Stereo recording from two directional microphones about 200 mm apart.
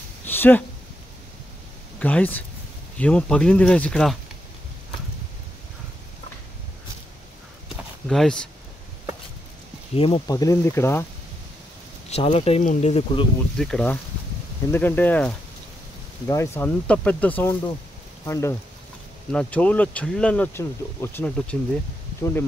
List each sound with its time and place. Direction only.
0.2 s a sound: 10° left (ahead or behind)
2.0 s speech: 5° left (ahead or behind)
7.7 s a sound: centre (ahead or behind)
9.9 s speech: 25° left (ahead or behind)
12.1 s speech: 30° left (ahead or behind)
13.6 s speech: 5° left (ahead or behind)